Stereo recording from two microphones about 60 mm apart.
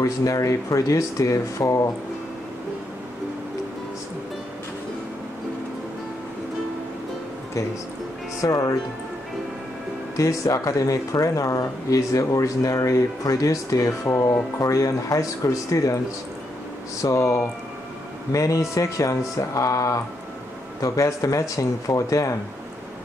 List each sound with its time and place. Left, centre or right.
0.0 s speech: left
8.4 s speech: left
10.1 s speech: left
17.0 s speech: left